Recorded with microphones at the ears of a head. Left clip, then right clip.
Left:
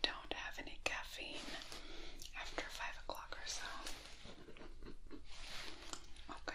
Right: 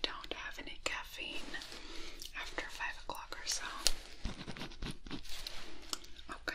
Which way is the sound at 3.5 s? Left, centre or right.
Right.